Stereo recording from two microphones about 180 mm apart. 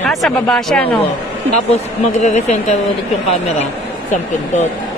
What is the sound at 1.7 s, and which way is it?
Speech, 40° left (ahead or behind).